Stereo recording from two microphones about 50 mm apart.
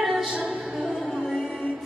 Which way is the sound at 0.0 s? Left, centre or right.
Centre.